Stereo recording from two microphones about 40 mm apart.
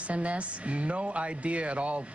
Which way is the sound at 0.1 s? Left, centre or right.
Right.